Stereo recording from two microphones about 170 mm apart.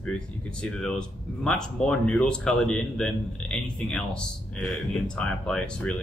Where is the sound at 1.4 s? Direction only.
5° left (ahead or behind).